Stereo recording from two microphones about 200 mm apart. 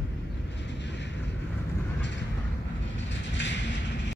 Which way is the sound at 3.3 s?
60° left (ahead or behind).